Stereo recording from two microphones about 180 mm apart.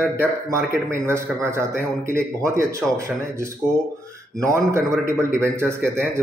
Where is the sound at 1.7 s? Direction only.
55° left (ahead or behind).